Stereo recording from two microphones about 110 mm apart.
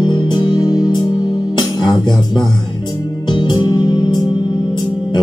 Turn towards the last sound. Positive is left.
turn(degrees=40)  # may be behind; listen again after turning